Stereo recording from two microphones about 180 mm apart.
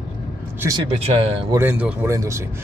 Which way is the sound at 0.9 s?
30° right (ahead or behind).